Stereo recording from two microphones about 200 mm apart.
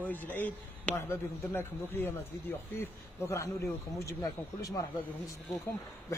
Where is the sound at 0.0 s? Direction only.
10° left (ahead or behind).